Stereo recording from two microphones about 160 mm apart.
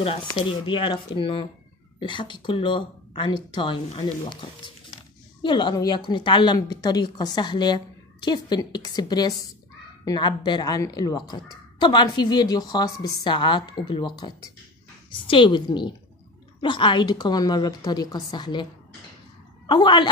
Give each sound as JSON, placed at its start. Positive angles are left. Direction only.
{"t": 0.0, "sound": "a woman's voice", "side_deg": 35}